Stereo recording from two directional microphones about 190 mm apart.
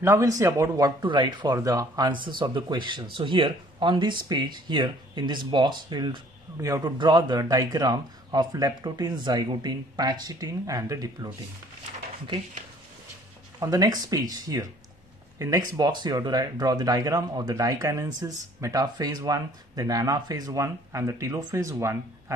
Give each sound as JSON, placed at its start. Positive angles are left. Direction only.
{"t": 0.0, "sound": "speech", "side_deg": -15}
{"t": 13.6, "sound": "speech", "side_deg": -20}